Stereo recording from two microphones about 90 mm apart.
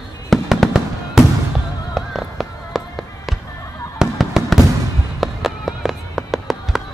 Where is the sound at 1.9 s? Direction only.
Centre (ahead or behind).